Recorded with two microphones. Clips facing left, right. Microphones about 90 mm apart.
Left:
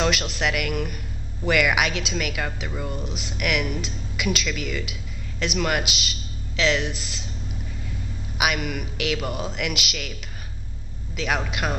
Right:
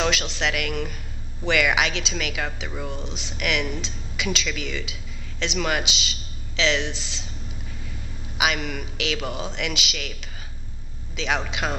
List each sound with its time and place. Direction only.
0.0 s a sound: centre (ahead or behind)
0.4 s speech: 5° left (ahead or behind)
8.4 s speech: 5° left (ahead or behind)
11.1 s speech: 5° left (ahead or behind)